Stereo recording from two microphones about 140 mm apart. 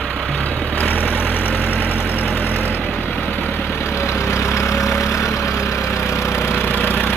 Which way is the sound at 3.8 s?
20° left (ahead or behind).